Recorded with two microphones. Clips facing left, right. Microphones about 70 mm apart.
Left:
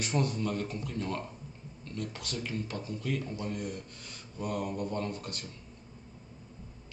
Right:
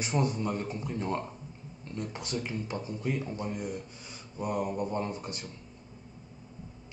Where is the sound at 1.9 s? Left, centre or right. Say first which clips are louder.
Right 2 dB; right.